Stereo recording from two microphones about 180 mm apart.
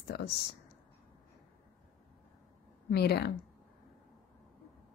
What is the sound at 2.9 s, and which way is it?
Speech, 65° left (ahead or behind).